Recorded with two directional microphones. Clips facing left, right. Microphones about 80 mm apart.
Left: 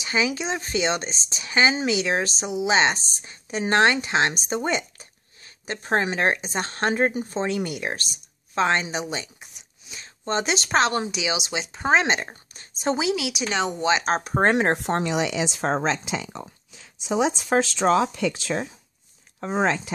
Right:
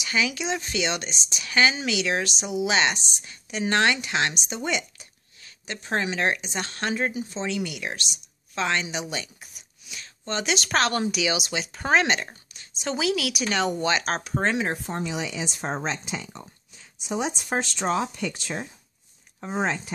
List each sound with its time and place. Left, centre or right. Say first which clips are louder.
0.0 s speech: left 2 dB; left
14.5 s speech: left 6 dB; left
14.8 s speech: left 6 dB; left